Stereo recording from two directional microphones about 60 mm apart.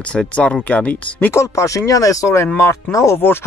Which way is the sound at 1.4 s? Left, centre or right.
Left.